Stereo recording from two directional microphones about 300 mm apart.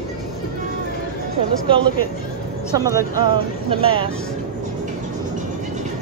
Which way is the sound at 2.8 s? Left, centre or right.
Centre.